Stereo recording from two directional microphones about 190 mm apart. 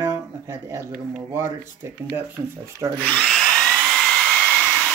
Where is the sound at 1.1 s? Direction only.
10° right (ahead or behind).